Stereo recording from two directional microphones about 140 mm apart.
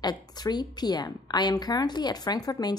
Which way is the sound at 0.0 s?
30° left (ahead or behind).